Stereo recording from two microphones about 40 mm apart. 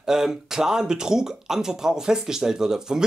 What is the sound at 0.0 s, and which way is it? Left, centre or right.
Speech, centre.